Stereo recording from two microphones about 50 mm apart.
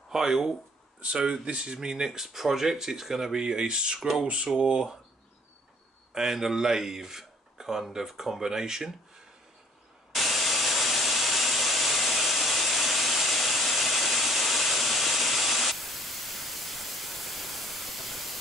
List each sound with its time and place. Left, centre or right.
0.1 s speech: centre
6.1 s speech: centre
10.1 s sawing: centre